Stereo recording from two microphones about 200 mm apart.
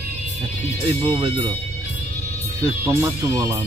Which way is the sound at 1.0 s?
25° right (ahead or behind).